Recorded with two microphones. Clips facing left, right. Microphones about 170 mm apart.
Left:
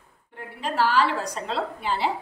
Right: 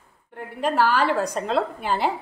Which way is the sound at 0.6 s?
55° right (ahead or behind).